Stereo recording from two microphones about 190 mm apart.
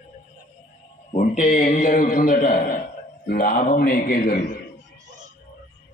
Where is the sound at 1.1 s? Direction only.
40° left (ahead or behind).